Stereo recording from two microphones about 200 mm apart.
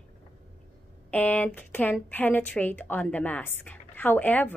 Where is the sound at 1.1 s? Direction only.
10° left (ahead or behind).